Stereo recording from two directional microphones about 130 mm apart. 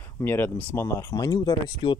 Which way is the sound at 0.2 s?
15° left (ahead or behind).